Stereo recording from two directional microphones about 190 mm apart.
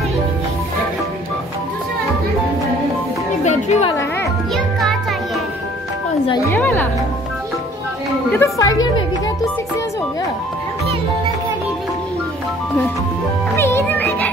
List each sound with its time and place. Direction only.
3.4 s speech: 35° left (ahead or behind)
6.2 s a woman's voice: 20° left (ahead or behind)
6.5 s speech: 10° left (ahead or behind)
8.3 s speech: 15° left (ahead or behind)
13.6 s music: 10° left (ahead or behind)